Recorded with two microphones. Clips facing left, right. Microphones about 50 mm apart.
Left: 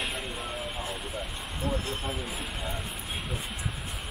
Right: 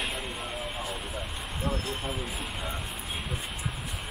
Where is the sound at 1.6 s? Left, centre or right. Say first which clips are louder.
Left 1 dB; right.